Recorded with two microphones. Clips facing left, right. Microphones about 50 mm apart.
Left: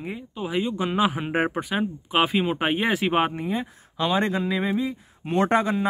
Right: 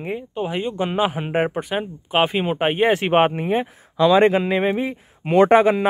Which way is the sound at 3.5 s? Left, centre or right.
Right.